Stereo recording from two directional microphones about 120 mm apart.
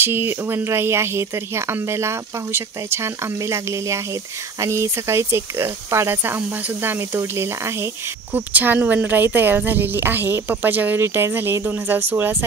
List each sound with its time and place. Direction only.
0.0 s speech: 15° right (ahead or behind)